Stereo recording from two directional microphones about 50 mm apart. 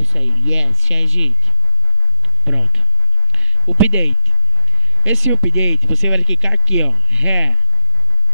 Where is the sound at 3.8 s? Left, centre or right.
Right.